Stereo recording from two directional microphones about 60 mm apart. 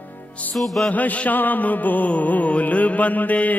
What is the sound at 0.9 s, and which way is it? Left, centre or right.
Music, left.